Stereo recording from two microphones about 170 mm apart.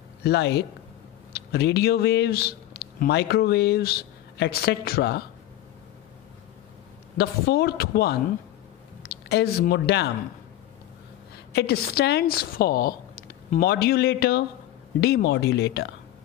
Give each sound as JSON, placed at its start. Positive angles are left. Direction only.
{"t": 0.2, "sound": "a woman's voice", "side_deg": 75}
{"t": 7.2, "sound": "a woman's voice", "side_deg": 70}
{"t": 11.5, "sound": "a woman's voice", "side_deg": 65}